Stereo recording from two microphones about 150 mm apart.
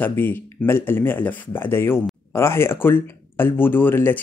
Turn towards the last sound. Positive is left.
turn(degrees=15)  # may be behind; listen again after turning